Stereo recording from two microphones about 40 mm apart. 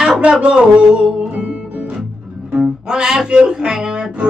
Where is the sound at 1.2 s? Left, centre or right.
Right.